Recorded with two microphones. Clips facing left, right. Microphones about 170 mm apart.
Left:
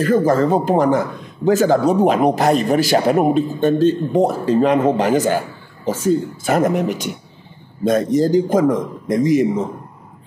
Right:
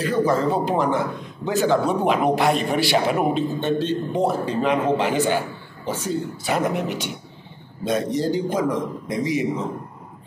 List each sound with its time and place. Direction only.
0.0 s a man's voice: 45° left (ahead or behind)